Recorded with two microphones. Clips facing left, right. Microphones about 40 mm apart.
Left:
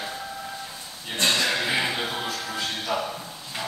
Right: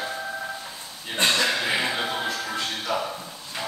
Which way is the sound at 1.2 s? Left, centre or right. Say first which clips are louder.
Right 1 dB; right.